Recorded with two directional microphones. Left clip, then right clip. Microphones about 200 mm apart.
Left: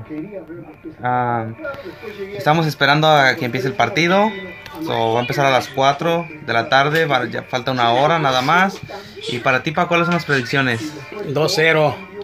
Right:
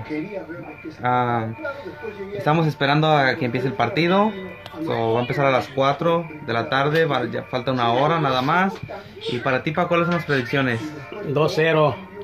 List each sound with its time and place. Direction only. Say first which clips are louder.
1.0 s speech: left 2 dB; 5° left (ahead or behind); by 10.8 s 20° left (ahead or behind)
11.3 s speech: left 3 dB; 10° right (ahead or behind)